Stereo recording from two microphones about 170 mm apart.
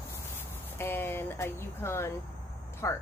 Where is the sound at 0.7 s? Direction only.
15° left (ahead or behind).